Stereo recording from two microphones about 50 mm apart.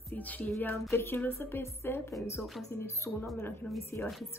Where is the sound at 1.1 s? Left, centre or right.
Left.